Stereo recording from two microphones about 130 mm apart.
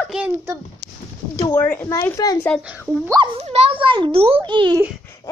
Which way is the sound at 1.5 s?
15° left (ahead or behind).